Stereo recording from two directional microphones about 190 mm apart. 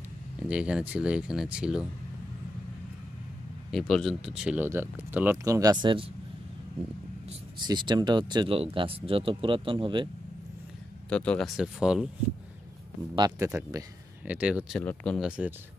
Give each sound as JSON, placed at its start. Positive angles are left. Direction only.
{"t": 0.5, "sound": "speech", "side_deg": -5}
{"t": 3.7, "sound": "speech", "side_deg": 0}
{"t": 7.6, "sound": "speech", "side_deg": -20}
{"t": 11.1, "sound": "speech", "side_deg": 5}
{"t": 13.1, "sound": "speech", "side_deg": -20}
{"t": 14.8, "sound": "speech", "side_deg": 5}